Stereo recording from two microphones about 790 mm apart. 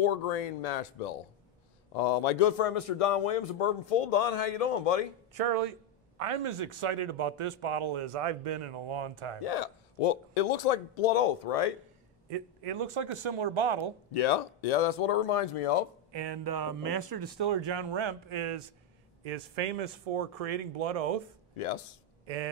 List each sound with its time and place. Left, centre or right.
0.0 s a man's voice: left
5.3 s a man's voice: right
9.4 s a man's voice: left
12.3 s a man's voice: right
14.1 s a man's voice: left
16.1 s a man's voice: right
19.2 s speech: right
22.2 s speech: right